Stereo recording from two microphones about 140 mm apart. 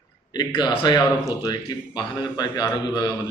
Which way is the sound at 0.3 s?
30° left (ahead or behind).